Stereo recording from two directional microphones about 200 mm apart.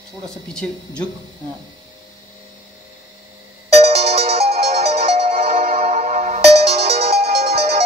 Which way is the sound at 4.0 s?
50° right (ahead or behind).